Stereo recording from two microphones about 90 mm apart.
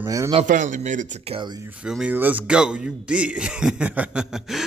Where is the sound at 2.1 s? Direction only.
20° right (ahead or behind).